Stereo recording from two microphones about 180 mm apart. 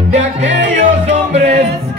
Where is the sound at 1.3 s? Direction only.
35° right (ahead or behind).